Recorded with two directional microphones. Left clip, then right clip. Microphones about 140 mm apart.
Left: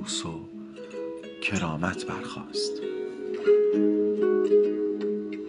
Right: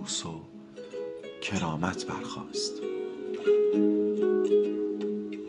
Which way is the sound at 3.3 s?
10° left (ahead or behind).